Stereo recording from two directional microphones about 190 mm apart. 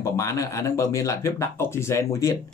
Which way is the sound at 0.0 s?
15° left (ahead or behind).